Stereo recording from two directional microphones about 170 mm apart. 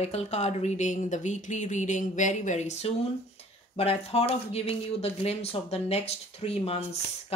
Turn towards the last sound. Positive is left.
turn(degrees=35)  # may be behind; listen again after turning